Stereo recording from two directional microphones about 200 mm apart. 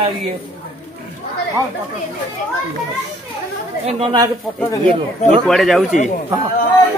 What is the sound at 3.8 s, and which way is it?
Speech, 30° right (ahead or behind).